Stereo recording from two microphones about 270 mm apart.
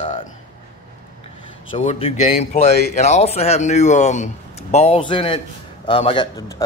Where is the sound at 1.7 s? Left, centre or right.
Left.